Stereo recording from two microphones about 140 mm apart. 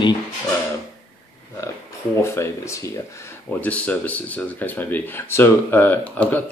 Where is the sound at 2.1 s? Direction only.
20° left (ahead or behind).